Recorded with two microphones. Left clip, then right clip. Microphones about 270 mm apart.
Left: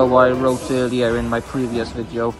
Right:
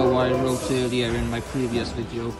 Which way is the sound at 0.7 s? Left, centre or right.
Centre.